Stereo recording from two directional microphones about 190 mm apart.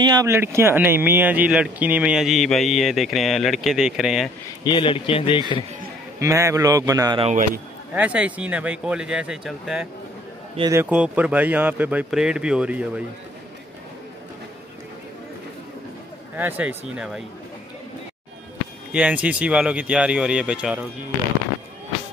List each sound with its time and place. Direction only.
0.0 s speech: 20° right (ahead or behind); by 4.3 s centre (ahead or behind)
4.6 s speech: 25° left (ahead or behind)
6.1 s speech: 15° right (ahead or behind)
7.2 s a man's voice: 45° right (ahead or behind)
7.9 s speech: 5° right (ahead or behind)
16.3 s speech: 10° right (ahead or behind)
18.9 s speech: 5° right (ahead or behind)